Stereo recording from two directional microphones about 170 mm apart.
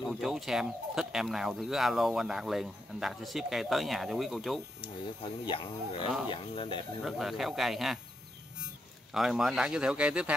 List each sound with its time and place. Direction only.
0.1 s speech: centre (ahead or behind)
5.2 s speech: 30° left (ahead or behind)
7.1 s speech: centre (ahead or behind)
9.1 s speech: centre (ahead or behind)